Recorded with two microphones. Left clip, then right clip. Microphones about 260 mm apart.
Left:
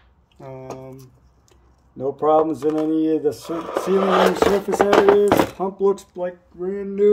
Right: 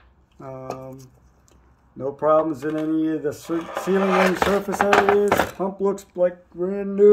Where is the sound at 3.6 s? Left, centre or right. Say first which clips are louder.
Left 1 dB; left.